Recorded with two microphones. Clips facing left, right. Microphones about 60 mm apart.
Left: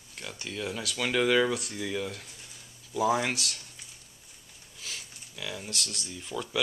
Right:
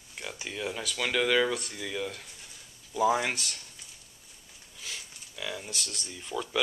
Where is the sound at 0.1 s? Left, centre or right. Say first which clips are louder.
Even; centre.